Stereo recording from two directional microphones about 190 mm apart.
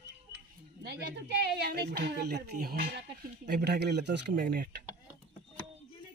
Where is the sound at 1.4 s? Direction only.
60° right (ahead or behind).